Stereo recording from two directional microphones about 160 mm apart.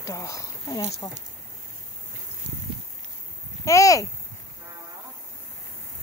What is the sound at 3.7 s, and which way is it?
Speech, 20° left (ahead or behind).